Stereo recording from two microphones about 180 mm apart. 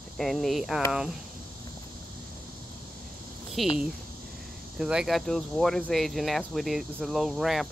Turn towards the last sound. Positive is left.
turn(degrees=0)  # may be behind; listen again after turning